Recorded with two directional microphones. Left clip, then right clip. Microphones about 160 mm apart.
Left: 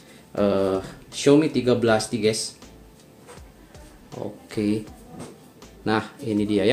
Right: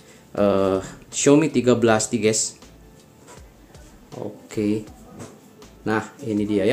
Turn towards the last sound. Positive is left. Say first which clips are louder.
# even
turn(degrees=0)  # may be behind; listen again after turning